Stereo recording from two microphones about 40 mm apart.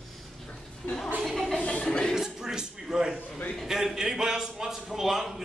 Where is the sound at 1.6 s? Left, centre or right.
Left.